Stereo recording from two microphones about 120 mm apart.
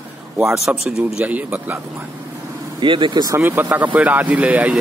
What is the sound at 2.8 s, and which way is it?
Speech, 45° right (ahead or behind).